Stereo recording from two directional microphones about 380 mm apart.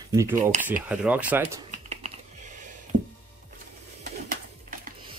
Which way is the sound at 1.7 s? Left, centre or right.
Centre.